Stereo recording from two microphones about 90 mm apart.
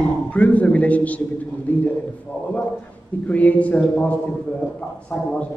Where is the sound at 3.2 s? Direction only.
15° left (ahead or behind).